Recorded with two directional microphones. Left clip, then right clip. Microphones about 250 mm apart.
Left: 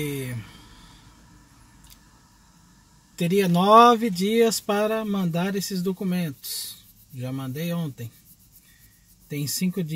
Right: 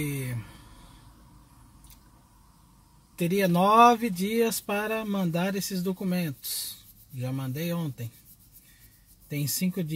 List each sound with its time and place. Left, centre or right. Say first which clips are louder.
0.0 s a sound: left 4 dB; centre
3.2 s speech: left 2 dB; centre
9.3 s speech: left 3 dB; left